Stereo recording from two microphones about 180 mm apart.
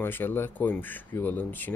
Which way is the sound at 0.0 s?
10° left (ahead or behind).